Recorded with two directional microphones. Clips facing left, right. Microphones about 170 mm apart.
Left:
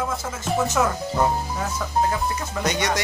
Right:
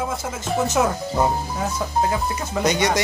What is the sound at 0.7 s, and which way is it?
Music, 15° right (ahead or behind).